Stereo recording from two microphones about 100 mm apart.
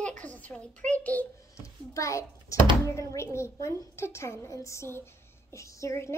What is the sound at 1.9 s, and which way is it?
A woman's voice, 30° left (ahead or behind).